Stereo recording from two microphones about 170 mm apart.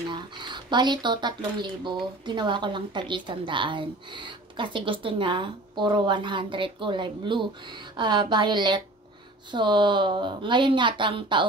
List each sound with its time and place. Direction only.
0.1 s a woman's voice: 25° right (ahead or behind)